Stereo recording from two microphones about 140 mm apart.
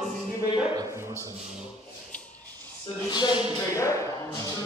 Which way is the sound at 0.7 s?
20° right (ahead or behind).